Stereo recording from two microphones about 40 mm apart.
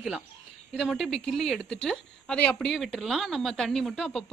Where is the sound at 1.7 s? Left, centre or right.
Centre.